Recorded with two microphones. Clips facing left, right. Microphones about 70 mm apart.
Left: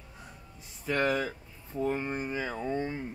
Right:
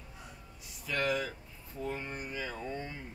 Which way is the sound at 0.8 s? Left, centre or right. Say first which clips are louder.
Left 4 dB; left.